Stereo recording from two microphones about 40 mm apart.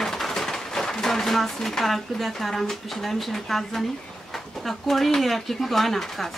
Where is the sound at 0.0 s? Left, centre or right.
Centre.